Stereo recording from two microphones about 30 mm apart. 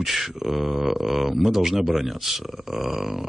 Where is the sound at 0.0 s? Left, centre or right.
Centre.